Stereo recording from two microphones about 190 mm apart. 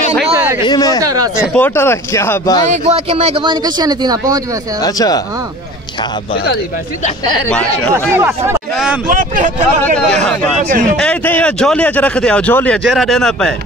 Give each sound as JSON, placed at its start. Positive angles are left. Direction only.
{"t": 0.6, "sound": "speech", "side_deg": 20}
{"t": 1.0, "sound": "speech", "side_deg": -20}
{"t": 1.4, "sound": "speech", "side_deg": 5}
{"t": 2.7, "sound": "speech", "side_deg": -35}
{"t": 4.8, "sound": "speech", "side_deg": 20}
{"t": 7.9, "sound": "speech", "side_deg": -15}
{"t": 9.0, "sound": "speech", "side_deg": -45}
{"t": 10.0, "sound": "a man's voice", "side_deg": 5}